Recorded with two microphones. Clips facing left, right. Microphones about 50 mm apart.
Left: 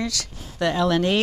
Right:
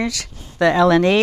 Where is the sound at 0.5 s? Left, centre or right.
Right.